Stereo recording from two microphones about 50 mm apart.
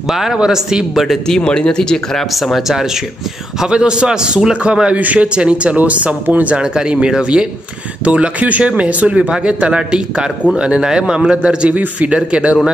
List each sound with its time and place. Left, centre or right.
0.1 s a man's voice: centre
1.2 s speech: centre
2.3 s speech: centre
3.6 s a man's voice: centre
6.5 s a man's voice: centre
11.7 s a man's voice: right